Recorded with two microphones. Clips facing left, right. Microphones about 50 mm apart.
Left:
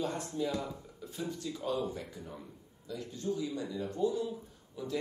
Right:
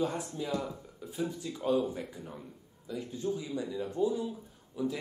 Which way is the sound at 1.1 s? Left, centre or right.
Centre.